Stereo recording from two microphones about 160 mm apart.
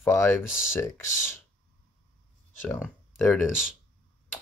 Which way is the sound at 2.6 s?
15° left (ahead or behind).